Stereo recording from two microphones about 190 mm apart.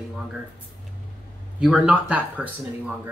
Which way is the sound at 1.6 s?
5° right (ahead or behind).